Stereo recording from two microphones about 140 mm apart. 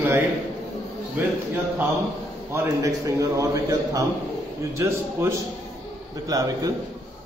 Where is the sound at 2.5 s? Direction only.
20° right (ahead or behind).